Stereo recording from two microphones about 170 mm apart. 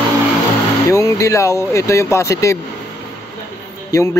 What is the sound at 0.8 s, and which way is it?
A man's voice, 20° left (ahead or behind).